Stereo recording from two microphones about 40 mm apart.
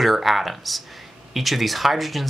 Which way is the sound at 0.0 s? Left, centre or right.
Centre.